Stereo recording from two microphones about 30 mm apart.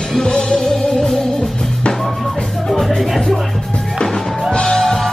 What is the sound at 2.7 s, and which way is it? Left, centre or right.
Music, centre.